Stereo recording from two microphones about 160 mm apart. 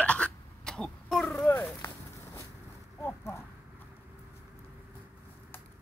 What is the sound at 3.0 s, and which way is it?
Clip-clop, 15° left (ahead or behind).